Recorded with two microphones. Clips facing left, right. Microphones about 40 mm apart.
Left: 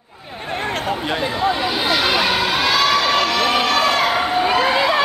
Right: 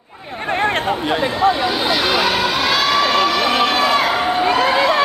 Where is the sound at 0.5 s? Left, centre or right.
Right.